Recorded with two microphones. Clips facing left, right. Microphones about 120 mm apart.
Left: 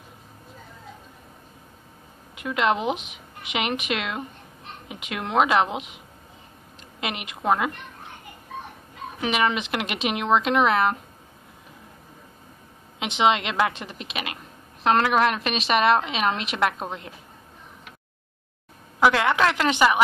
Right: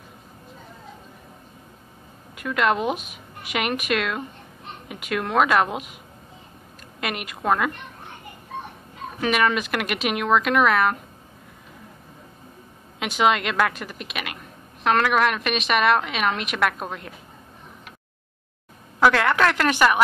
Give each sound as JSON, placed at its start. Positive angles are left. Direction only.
{"t": 2.3, "sound": "a woman's voice", "side_deg": 20}
{"t": 7.0, "sound": "a woman's voice", "side_deg": 20}
{"t": 9.2, "sound": "a woman's voice", "side_deg": 20}
{"t": 13.0, "sound": "a woman's voice", "side_deg": 25}
{"t": 18.9, "sound": "speech", "side_deg": 15}